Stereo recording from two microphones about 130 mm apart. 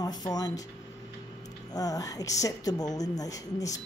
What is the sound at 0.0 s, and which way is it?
Speech, 30° left (ahead or behind).